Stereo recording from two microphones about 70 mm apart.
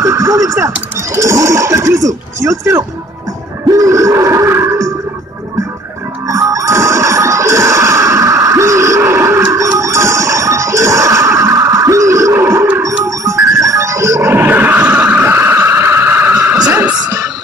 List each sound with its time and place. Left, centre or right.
0.0 s speech: right
3.7 s a sound: right
6.2 s music: right
12.8 s dog: right
14.3 s a sound: right
15.2 s vehicle: right